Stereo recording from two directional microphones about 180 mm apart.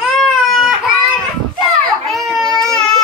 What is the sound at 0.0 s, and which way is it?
Baby cry, centre (ahead or behind).